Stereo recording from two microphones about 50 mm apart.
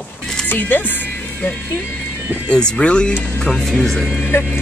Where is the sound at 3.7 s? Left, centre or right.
Centre.